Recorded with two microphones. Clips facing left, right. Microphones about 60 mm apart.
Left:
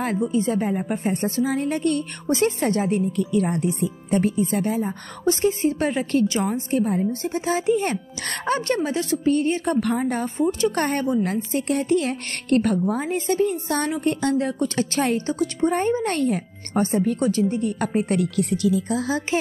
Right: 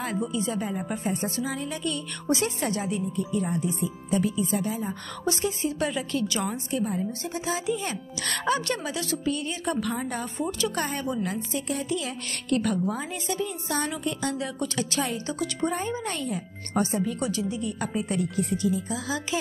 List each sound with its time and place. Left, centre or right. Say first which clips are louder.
0.3 s a woman's voice: left 7 dB; left
3.1 s speech: left 6 dB; left
4.1 s speech: left 4 dB; left
5.2 s a woman's voice: left 8 dB; left
10.7 s a woman's voice: left 7 dB; left
15.7 s speech: left 8 dB; left
16.7 s speech: left 5 dB; left
18.9 s speech: left 7 dB; left